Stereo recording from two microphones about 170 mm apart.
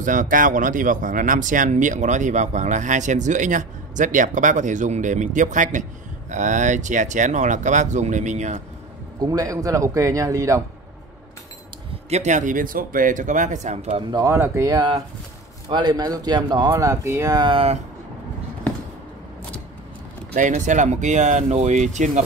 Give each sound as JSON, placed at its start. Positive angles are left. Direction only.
{"t": 0.0, "sound": "speech", "side_deg": -50}
{"t": 9.2, "sound": "speech", "side_deg": -20}
{"t": 12.1, "sound": "speech", "side_deg": -45}
{"t": 14.1, "sound": "speech", "side_deg": -15}
{"t": 20.3, "sound": "speech", "side_deg": -45}